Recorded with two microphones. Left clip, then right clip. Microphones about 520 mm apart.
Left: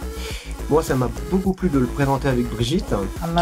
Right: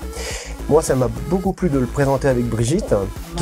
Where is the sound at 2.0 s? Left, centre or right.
Right.